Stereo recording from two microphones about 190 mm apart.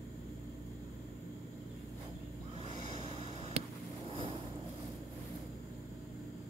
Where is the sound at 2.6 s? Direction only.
40° right (ahead or behind).